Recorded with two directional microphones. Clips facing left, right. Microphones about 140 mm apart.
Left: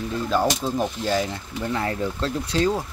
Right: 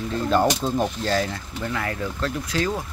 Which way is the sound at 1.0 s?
15° left (ahead or behind).